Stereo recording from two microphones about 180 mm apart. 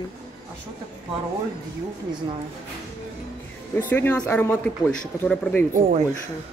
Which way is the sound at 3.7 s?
10° left (ahead or behind).